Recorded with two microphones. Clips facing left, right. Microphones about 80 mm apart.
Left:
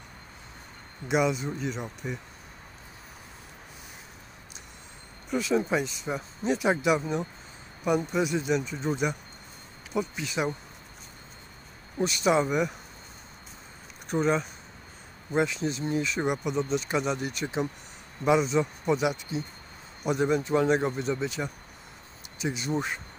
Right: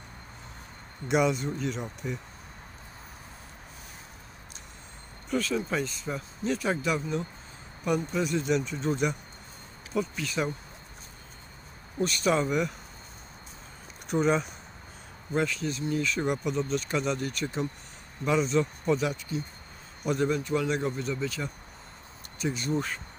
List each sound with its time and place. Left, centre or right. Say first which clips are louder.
1.0 s speech: even; centre
5.5 s speech: left 4 dB; centre
12.0 s speech: left 2 dB; centre
14.0 s speech: even; centre
15.3 s a man's voice: left 2 dB; centre
16.3 s a man's voice: left 1 dB; centre